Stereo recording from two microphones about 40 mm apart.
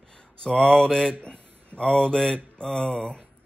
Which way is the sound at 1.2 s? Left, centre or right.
Left.